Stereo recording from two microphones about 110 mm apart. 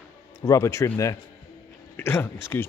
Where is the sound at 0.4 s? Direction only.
30° left (ahead or behind).